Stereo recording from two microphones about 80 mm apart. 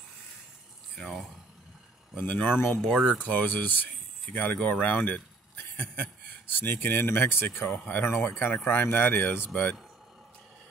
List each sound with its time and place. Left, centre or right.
0.9 s speech: centre
3.2 s speech: left
6.6 s speech: left